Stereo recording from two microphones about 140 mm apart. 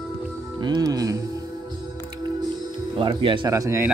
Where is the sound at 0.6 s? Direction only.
30° right (ahead or behind).